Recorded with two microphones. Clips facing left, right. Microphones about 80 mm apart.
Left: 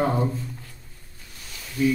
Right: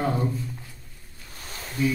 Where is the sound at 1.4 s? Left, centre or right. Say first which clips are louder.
Left 2 dB; right.